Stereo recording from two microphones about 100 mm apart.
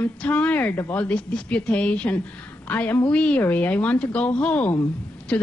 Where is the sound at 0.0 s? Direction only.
15° left (ahead or behind).